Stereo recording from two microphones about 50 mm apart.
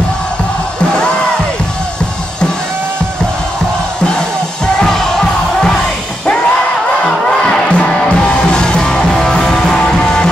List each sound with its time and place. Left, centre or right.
0.9 s music: centre
4.7 s music: centre
7.1 s crowd: centre
7.7 s music: left